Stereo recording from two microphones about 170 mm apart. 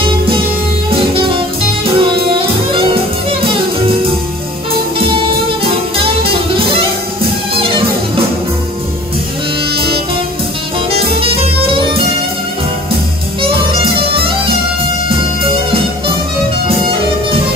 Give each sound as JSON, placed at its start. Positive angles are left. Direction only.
{"t": 0.9, "sound": "music", "side_deg": -30}
{"t": 4.9, "sound": "music", "side_deg": -30}
{"t": 11.1, "sound": "music", "side_deg": -30}
{"t": 13.4, "sound": "music", "side_deg": -30}
{"t": 16.6, "sound": "music", "side_deg": -30}